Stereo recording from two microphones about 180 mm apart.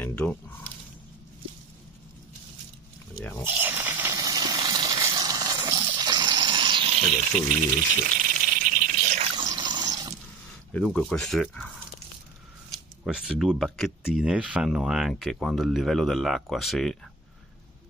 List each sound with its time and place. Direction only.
0.0 s squish: 5° left (ahead or behind)
3.4 s a sound: 10° right (ahead or behind)
4.6 s water: 25° right (ahead or behind); by 7.5 s 40° right (ahead or behind)
8.5 s a sound: 45° right (ahead or behind)
9.4 s water: 20° right (ahead or behind)
10.7 s speech: 5° left (ahead or behind)
13.0 s speech: centre (ahead or behind)